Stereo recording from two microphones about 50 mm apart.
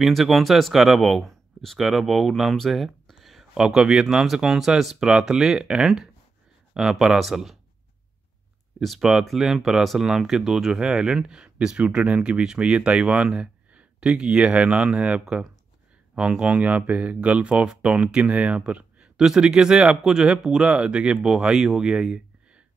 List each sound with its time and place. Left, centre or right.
0.0 s speech: centre
8.8 s speech: centre; by 18.6 s right
18.7 s a sound: right
19.1 s speech: centre